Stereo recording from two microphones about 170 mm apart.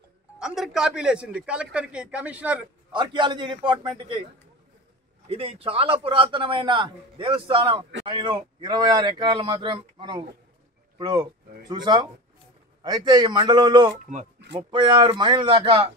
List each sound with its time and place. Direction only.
0.4 s speech: 5° right (ahead or behind)
2.9 s speech: 25° right (ahead or behind)
5.3 s a man's voice: 35° right (ahead or behind)